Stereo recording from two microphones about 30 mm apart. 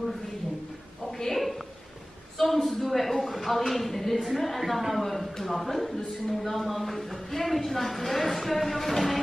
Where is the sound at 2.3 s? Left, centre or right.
Centre.